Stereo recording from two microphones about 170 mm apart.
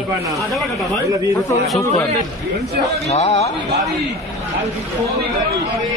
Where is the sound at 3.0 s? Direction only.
40° left (ahead or behind).